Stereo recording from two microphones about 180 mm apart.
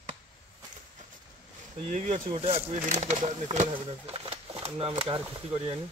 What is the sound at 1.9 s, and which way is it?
Speech, 45° right (ahead or behind).